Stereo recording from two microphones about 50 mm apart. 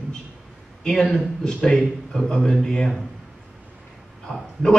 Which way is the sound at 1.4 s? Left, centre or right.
Centre.